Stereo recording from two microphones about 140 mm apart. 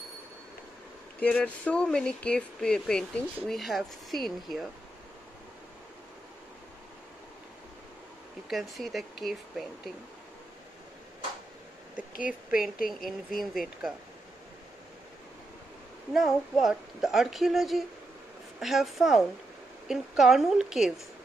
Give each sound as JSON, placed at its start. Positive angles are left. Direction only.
{"t": 1.2, "sound": "speech", "side_deg": 10}
{"t": 8.5, "sound": "speech", "side_deg": 0}
{"t": 12.1, "sound": "a woman's voice", "side_deg": 75}
{"t": 12.4, "sound": "a woman's voice", "side_deg": -5}
{"t": 16.1, "sound": "speech", "side_deg": 0}